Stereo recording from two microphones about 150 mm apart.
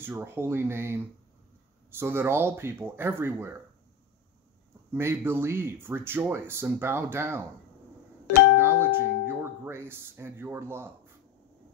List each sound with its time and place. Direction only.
0.0 s speech: 15° right (ahead or behind)
4.9 s speech: 15° right (ahead or behind)
8.5 s music: 15° right (ahead or behind)
9.3 s speech: 15° right (ahead or behind)